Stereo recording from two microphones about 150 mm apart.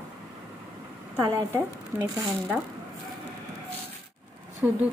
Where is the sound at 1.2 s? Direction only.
20° right (ahead or behind).